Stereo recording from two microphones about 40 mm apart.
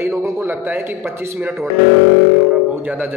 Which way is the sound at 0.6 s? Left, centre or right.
Right.